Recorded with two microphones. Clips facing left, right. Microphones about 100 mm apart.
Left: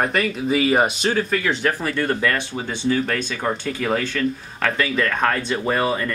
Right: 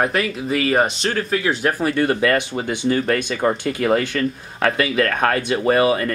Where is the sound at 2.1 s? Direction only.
10° right (ahead or behind).